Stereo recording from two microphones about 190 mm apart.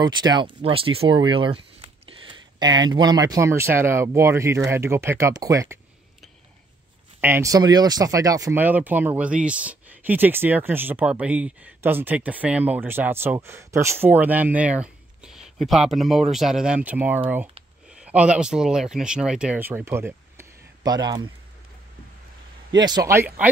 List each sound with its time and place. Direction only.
0.0 s speech: 20° right (ahead or behind)
7.2 s speech: 10° right (ahead or behind)
22.8 s speech: 20° right (ahead or behind)